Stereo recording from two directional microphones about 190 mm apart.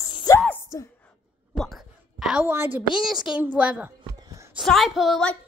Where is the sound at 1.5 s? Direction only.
Centre (ahead or behind).